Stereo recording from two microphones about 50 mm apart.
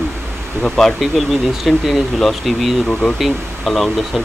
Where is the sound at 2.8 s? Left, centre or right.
Centre.